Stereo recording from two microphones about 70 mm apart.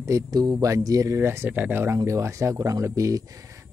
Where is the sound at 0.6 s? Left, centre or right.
Right.